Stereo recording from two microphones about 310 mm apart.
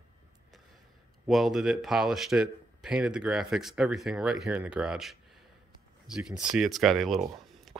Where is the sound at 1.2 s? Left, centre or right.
Centre.